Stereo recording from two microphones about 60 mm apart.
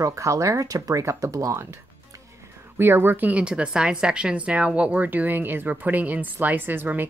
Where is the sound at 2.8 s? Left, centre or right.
Right.